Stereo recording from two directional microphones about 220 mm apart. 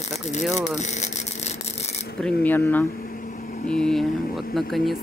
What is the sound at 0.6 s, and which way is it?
Speech, 30° left (ahead or behind).